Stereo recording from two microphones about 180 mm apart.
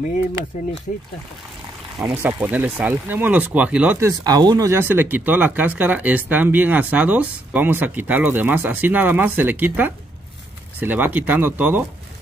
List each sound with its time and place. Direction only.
0.9 s speech: 45° left (ahead or behind)
2.0 s speech: 10° right (ahead or behind)
4.2 s speech: 20° right (ahead or behind)